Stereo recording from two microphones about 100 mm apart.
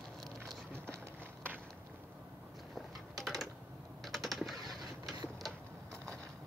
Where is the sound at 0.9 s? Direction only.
20° right (ahead or behind).